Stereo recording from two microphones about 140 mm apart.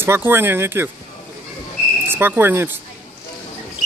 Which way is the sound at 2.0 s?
15° right (ahead or behind).